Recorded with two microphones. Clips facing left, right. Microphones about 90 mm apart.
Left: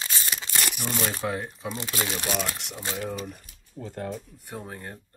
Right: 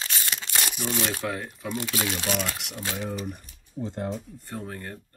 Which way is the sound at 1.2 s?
30° left (ahead or behind).